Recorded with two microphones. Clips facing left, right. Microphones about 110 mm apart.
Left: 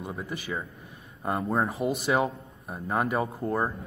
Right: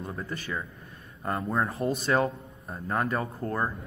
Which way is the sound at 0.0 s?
15° left (ahead or behind).